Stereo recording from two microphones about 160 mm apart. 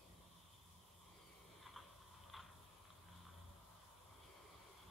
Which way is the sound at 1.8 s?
5° left (ahead or behind).